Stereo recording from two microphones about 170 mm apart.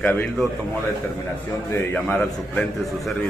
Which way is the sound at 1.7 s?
10° left (ahead or behind).